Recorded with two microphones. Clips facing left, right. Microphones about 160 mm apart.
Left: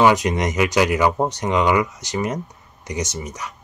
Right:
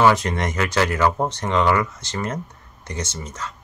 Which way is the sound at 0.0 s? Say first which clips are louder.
Left 1 dB; 15° left (ahead or behind).